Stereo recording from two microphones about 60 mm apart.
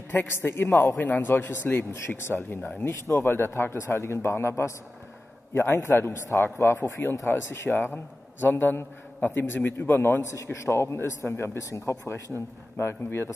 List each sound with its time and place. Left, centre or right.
0.1 s a man's voice: left